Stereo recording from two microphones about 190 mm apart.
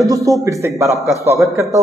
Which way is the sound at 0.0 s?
15° right (ahead or behind).